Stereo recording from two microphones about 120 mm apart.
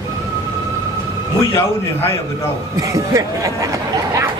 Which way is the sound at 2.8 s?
30° right (ahead or behind).